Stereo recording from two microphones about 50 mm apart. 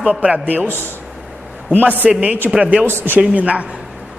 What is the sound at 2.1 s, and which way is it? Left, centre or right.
Speech, right.